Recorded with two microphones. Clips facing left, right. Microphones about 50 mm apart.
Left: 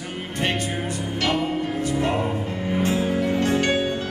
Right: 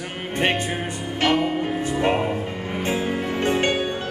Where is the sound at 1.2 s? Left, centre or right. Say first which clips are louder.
Right 3 dB; right.